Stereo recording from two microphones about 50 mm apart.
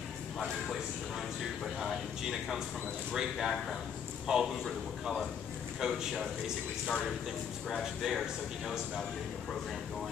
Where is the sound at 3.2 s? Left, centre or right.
Centre.